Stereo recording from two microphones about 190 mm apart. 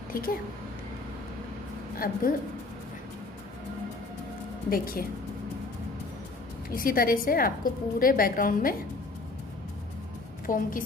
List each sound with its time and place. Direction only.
0.1 s a woman's voice: 50° left (ahead or behind)
2.0 s a woman's voice: 50° left (ahead or behind)
4.6 s a woman's voice: 50° left (ahead or behind)
6.7 s a woman's voice: 50° left (ahead or behind)
10.4 s a woman's voice: 45° left (ahead or behind)